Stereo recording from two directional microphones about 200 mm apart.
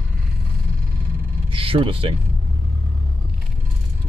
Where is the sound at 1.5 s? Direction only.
25° right (ahead or behind).